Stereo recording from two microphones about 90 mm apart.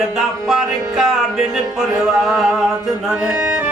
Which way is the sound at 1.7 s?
5° right (ahead or behind).